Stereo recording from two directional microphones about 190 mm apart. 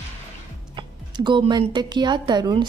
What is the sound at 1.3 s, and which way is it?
Speech, 25° right (ahead or behind).